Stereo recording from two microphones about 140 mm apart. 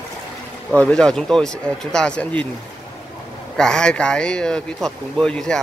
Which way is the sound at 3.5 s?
5° left (ahead or behind).